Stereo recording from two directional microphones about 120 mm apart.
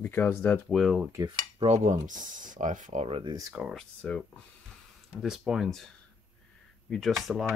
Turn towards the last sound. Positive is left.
turn(degrees=0)  # may be behind; listen again after turning